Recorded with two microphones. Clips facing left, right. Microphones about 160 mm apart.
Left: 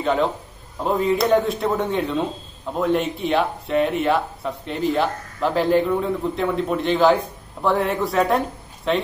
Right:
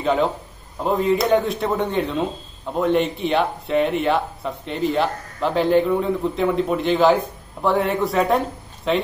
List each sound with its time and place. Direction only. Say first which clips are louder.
0.0 s speech: right 1 dB; centre (ahead or behind)